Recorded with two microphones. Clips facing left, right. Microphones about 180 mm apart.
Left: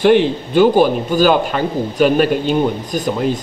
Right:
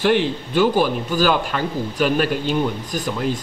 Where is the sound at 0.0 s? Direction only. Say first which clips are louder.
Left 6 dB; 20° left (ahead or behind).